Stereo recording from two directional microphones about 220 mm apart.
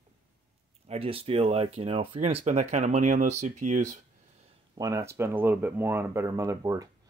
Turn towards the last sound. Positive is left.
turn(degrees=-15)  # may be behind; listen again after turning